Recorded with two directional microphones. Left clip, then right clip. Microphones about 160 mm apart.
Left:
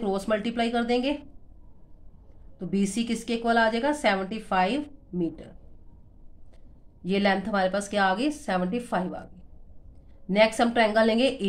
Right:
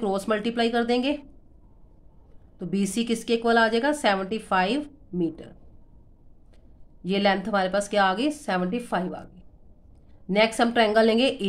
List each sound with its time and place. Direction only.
0.0 s a woman's voice: 25° right (ahead or behind)
2.6 s a woman's voice: 25° right (ahead or behind)
7.0 s a woman's voice: 20° right (ahead or behind)
10.2 s a woman's voice: 20° right (ahead or behind)